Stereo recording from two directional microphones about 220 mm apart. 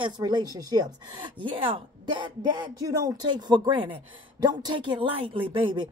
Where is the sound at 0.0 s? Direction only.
20° right (ahead or behind).